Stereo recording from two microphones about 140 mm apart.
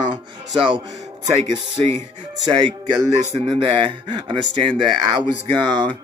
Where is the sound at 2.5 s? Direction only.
35° right (ahead or behind).